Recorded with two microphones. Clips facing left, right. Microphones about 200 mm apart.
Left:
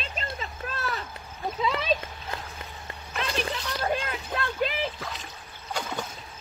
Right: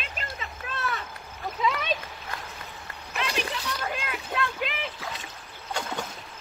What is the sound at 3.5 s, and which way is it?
Splash, 40° left (ahead or behind).